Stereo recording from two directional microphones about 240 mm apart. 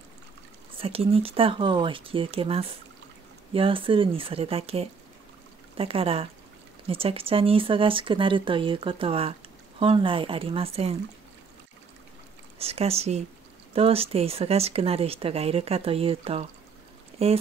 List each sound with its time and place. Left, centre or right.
0.7 s speech: right
12.5 s speech: right